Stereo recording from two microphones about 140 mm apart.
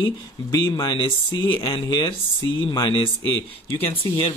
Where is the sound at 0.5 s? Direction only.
30° left (ahead or behind).